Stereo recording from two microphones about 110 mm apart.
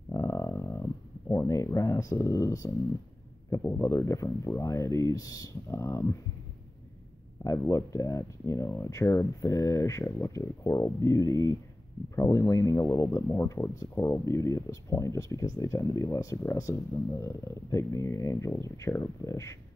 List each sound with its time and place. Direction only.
0.1 s a sound: 30° left (ahead or behind)
1.3 s speech: 25° left (ahead or behind)
7.4 s speech: 30° left (ahead or behind)